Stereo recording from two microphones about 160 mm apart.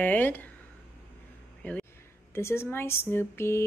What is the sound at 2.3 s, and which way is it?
A woman's voice, 15° left (ahead or behind).